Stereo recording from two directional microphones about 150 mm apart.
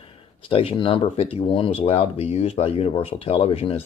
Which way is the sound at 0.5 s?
40° left (ahead or behind).